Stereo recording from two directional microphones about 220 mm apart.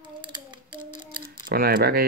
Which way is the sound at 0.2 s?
20° right (ahead or behind).